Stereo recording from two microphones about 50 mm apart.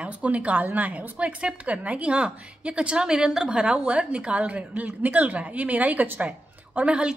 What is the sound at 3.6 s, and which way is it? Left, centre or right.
A woman's voice, right.